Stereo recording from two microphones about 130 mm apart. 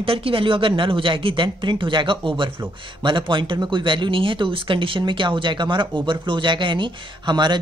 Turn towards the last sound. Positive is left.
turn(degrees=-35)  # may be behind; listen again after turning